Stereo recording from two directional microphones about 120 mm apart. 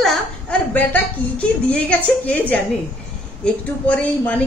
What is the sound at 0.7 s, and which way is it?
Speech, 10° left (ahead or behind).